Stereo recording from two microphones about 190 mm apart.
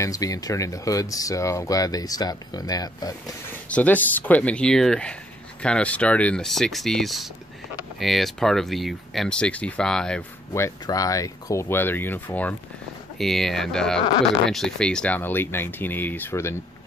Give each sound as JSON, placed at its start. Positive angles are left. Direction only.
{"t": 0.0, "sound": "speech", "side_deg": 20}
{"t": 3.6, "sound": "speech", "side_deg": 5}
{"t": 10.5, "sound": "speech", "side_deg": 15}